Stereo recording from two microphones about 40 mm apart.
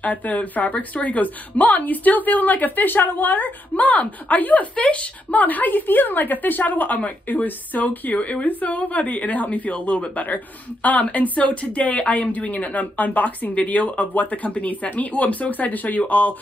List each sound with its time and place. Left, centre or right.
0.0 s a woman's voice: left